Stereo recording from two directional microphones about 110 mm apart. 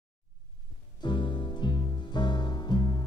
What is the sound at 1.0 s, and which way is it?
Music, 45° left (ahead or behind).